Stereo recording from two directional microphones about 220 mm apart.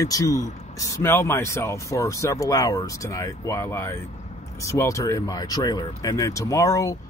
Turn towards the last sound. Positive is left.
turn(degrees=15)  # may be behind; listen again after turning